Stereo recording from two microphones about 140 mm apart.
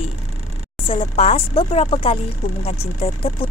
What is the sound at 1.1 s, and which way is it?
Speech, 50° left (ahead or behind).